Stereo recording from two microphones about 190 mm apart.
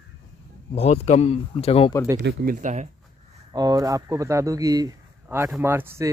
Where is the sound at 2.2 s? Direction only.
60° right (ahead or behind); by 2.9 s 40° right (ahead or behind).